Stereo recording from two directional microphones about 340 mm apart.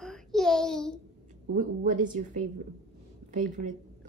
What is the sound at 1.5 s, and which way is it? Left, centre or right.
A woman's voice, right.